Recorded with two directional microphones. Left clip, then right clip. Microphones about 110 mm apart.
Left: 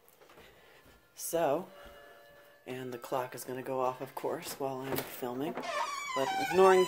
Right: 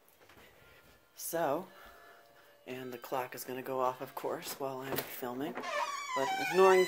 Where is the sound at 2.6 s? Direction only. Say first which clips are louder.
Left 2 dB; 30° left (ahead or behind).